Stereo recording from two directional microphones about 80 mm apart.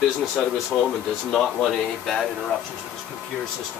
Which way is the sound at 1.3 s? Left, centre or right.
Centre.